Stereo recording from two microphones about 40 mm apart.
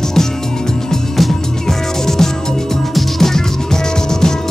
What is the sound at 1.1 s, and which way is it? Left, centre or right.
Music, centre.